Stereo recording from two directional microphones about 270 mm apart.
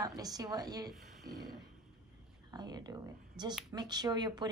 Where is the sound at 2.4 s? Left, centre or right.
Centre.